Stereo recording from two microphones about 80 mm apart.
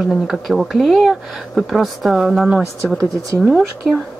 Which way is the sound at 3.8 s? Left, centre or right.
Centre.